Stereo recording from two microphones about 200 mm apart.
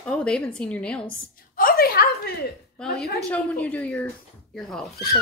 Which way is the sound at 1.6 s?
45° left (ahead or behind).